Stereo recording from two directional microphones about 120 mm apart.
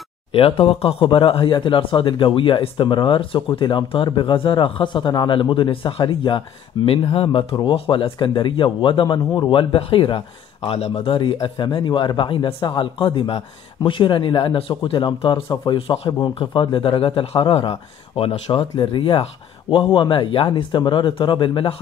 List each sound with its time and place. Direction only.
0.3 s speech: 50° left (ahead or behind)